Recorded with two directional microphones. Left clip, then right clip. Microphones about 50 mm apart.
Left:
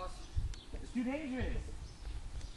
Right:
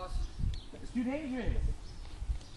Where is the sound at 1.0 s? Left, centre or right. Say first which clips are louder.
Right 3 dB; centre.